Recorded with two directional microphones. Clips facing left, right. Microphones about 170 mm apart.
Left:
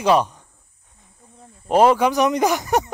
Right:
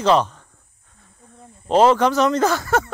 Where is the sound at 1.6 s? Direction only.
10° left (ahead or behind).